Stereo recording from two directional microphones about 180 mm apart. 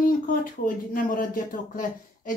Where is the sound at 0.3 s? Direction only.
50° left (ahead or behind).